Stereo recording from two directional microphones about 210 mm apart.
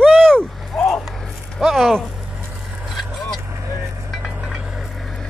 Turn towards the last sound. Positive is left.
turn(degrees=-5)  # may be behind; listen again after turning